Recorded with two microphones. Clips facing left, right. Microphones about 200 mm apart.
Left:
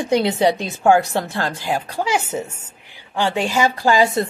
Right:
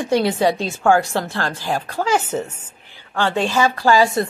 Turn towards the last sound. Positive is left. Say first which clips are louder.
# right 1 dB
turn(degrees=20)  # may be behind; listen again after turning